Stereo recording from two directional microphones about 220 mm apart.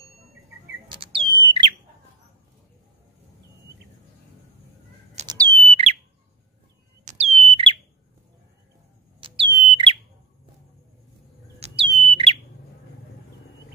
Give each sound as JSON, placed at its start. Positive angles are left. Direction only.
{"t": 0.8, "sound": "bird", "side_deg": -20}
{"t": 5.2, "sound": "a sound", "side_deg": -20}
{"t": 5.7, "sound": "bird", "side_deg": -25}
{"t": 7.1, "sound": "bird", "side_deg": -30}
{"t": 9.2, "sound": "smoke detector", "side_deg": -20}
{"t": 11.6, "sound": "bird", "side_deg": -30}